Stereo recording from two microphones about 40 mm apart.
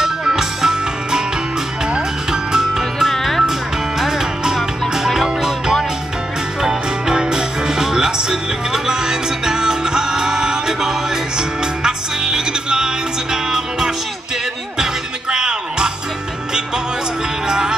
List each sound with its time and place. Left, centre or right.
0.0 s music: centre
3.1 s music: centre
4.0 s music: centre
15.3 s music: centre
17.5 s music: centre